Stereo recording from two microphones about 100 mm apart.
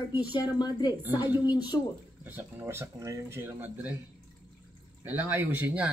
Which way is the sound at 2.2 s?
20° right (ahead or behind).